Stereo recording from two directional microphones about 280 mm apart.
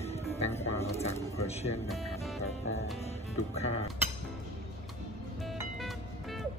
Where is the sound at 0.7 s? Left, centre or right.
Left.